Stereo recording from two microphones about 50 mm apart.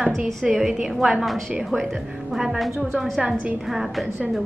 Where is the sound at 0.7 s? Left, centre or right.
Centre.